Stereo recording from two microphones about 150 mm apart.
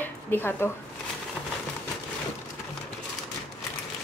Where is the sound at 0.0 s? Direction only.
15° left (ahead or behind).